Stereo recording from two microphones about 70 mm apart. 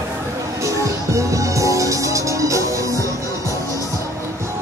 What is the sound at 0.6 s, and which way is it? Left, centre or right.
Music, right.